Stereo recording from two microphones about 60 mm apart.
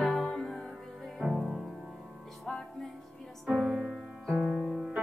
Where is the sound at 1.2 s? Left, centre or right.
Right.